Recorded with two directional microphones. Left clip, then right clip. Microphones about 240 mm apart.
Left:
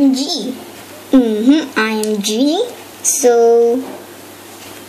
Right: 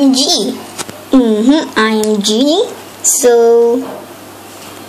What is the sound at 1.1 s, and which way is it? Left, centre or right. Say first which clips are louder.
Speech: right 2 dB; centre.